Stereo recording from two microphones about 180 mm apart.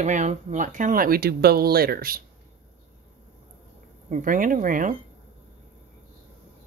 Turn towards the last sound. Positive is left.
turn(degrees=-50)  # may be behind; listen again after turning